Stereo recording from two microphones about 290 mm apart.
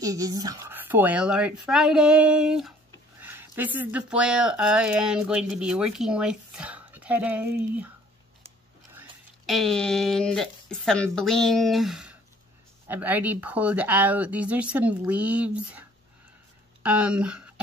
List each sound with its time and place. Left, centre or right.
0.0 s speech: centre
9.5 s speech: centre
16.8 s speech: centre